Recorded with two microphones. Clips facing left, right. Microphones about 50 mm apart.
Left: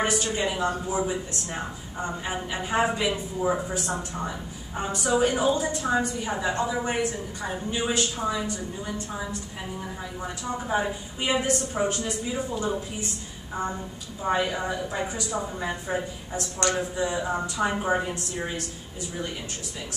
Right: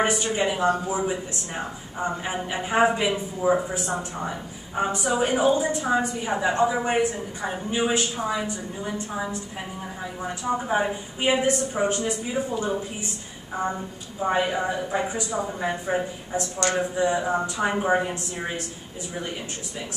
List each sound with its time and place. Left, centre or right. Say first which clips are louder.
0.0 s a woman's voice: right 3 dB; centre
3.1 s a woman's voice: right 3 dB; centre
4.7 s a woman's voice: right 1 dB; centre
14.3 s a woman's voice: right 2 dB; centre